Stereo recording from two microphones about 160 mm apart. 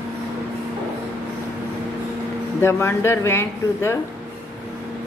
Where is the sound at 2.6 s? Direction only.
15° left (ahead or behind).